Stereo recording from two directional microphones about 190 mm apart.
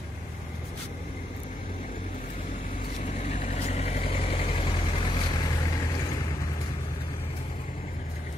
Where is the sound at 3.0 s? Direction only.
35° left (ahead or behind).